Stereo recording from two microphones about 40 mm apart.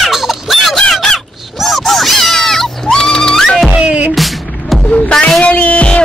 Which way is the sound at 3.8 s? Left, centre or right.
Right.